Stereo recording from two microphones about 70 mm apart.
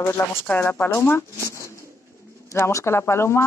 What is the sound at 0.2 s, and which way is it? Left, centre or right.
Speech, left.